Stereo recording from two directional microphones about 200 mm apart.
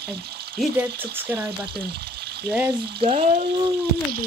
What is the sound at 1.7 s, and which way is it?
Water, 55° right (ahead or behind).